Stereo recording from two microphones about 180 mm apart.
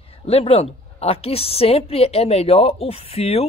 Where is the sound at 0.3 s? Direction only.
35° left (ahead or behind).